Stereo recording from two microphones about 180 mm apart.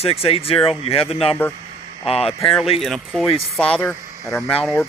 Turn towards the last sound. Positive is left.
turn(degrees=5)  # may be behind; listen again after turning